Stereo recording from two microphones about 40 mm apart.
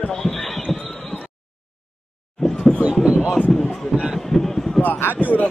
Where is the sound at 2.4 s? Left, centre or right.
Centre.